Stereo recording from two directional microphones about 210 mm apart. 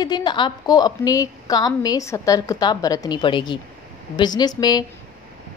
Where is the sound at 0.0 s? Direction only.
20° left (ahead or behind).